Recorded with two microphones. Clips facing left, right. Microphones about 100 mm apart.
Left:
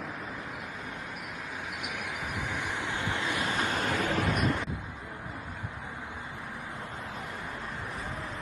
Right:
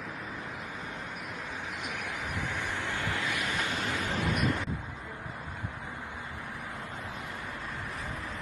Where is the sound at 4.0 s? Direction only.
55° left (ahead or behind).